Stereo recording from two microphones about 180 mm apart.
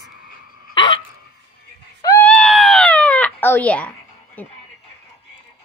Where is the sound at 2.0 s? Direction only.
15° left (ahead or behind).